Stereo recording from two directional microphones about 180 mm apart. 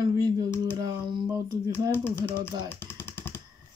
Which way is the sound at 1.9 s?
10° left (ahead or behind).